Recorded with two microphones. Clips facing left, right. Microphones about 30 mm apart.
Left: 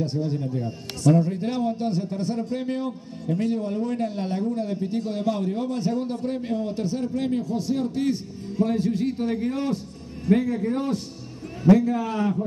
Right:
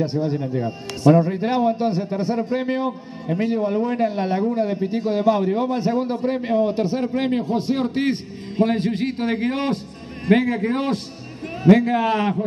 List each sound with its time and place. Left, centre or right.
0.0 s a man's voice: right